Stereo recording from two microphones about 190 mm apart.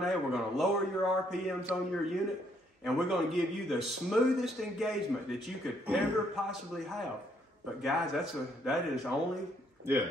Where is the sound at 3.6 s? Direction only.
Centre (ahead or behind).